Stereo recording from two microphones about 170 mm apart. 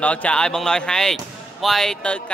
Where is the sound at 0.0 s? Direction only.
10° left (ahead or behind).